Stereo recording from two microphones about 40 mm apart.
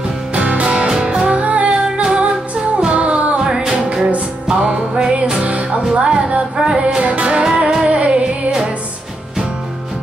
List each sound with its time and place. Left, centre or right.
0.3 s music: right
1.4 s music: right
3.3 s music: centre